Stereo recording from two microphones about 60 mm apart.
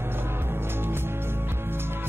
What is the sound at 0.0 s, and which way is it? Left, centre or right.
Music, right.